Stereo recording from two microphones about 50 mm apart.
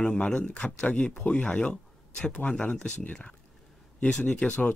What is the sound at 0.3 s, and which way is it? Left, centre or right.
Speech, centre.